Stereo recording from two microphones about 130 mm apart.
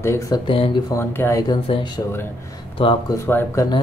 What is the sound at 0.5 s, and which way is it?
Speech, 40° left (ahead or behind).